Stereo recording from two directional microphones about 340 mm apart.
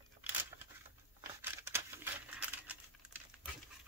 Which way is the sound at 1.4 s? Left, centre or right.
Centre.